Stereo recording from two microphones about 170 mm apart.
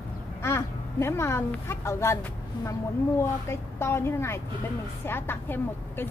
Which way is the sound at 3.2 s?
15° left (ahead or behind).